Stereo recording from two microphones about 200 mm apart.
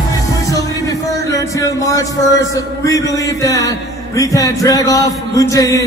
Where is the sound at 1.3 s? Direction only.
15° left (ahead or behind).